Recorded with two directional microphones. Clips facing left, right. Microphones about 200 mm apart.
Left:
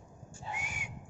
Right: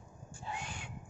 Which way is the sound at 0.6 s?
10° left (ahead or behind).